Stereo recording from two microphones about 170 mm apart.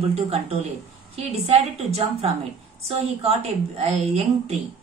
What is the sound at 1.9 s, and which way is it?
A woman's voice, 40° right (ahead or behind).